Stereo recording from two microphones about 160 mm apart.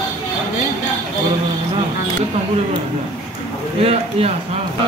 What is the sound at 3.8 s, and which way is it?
Speech, 40° right (ahead or behind).